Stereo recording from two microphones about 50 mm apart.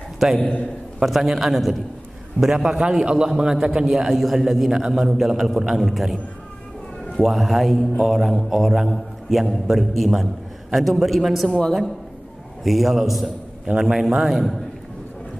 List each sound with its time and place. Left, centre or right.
0.4 s a man's voice: left
0.9 s a man's voice: centre
7.2 s a man's voice: centre
12.6 s a man's voice: centre
13.7 s a man's voice: centre